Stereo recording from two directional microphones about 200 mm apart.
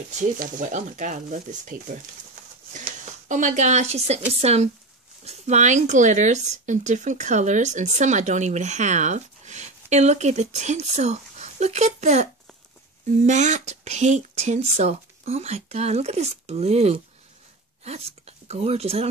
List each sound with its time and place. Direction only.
0.2 s speech: 40° right (ahead or behind)